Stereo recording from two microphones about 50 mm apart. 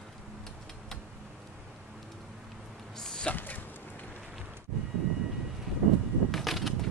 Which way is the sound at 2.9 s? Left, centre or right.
Centre.